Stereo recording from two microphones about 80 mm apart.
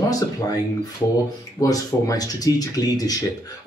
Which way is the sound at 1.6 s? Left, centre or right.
Left.